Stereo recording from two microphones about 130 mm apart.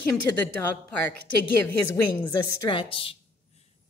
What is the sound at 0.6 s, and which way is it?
Speech, 15° left (ahead or behind).